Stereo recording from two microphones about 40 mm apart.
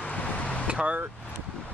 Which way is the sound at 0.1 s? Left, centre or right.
Left.